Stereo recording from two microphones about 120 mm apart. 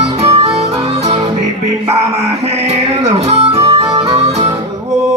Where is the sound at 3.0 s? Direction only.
65° right (ahead or behind).